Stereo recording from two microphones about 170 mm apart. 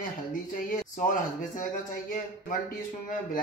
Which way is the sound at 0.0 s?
50° left (ahead or behind).